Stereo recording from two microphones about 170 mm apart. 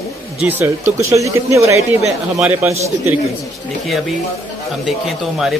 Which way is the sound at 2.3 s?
5° right (ahead or behind).